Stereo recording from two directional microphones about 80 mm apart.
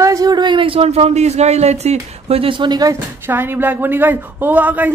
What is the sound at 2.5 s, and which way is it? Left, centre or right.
Speech, right.